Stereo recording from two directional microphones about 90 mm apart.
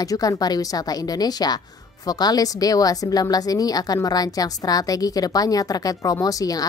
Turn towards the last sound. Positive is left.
turn(degrees=45)  # may be behind; listen again after turning